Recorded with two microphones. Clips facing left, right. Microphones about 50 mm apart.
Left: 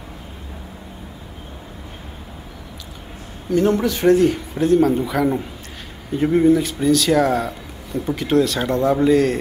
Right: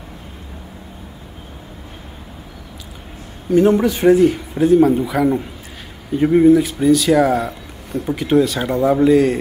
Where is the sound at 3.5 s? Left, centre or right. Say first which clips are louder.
Right 4 dB; centre.